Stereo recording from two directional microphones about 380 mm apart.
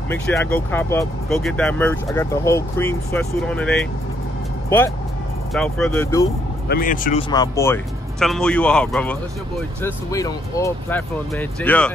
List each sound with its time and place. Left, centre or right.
0.1 s speech: centre
6.7 s speech: left; by 11.9 s centre